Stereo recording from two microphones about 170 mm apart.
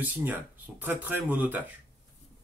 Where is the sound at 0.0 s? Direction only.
10° right (ahead or behind).